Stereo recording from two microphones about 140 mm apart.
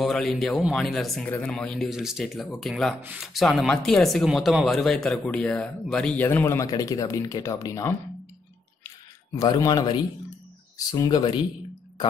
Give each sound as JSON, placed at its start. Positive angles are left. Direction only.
{"t": 0.0, "sound": "speech", "side_deg": 0}
{"t": 9.3, "sound": "speech", "side_deg": 25}